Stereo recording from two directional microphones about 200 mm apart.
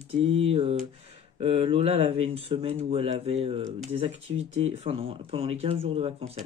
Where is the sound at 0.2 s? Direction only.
30° right (ahead or behind).